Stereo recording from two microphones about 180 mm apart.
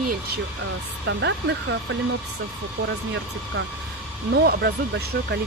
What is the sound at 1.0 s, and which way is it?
Speech, 75° right (ahead or behind).